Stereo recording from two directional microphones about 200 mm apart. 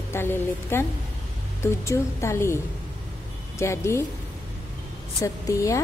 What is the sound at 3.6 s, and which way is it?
Speech, 15° left (ahead or behind).